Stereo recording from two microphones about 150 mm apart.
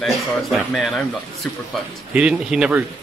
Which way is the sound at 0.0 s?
Centre (ahead or behind).